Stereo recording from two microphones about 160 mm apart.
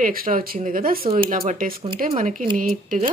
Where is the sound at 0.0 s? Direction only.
65° right (ahead or behind).